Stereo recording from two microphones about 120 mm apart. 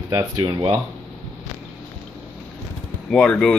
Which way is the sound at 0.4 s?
40° right (ahead or behind).